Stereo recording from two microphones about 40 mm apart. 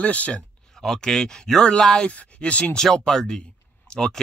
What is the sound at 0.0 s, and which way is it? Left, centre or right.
Speech, left.